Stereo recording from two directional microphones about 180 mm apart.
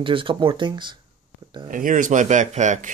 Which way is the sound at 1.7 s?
45° right (ahead or behind).